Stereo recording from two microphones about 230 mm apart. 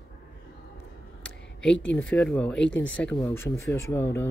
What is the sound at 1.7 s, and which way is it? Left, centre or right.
Speech, left.